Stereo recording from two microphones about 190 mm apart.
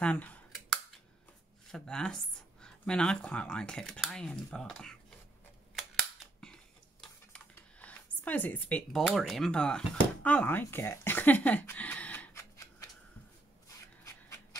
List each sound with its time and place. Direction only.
0.0 s a sound: 5° left (ahead or behind)
1.7 s speech: 5° left (ahead or behind)
5.8 s scissors: centre (ahead or behind)
14.0 s printer: 15° left (ahead or behind)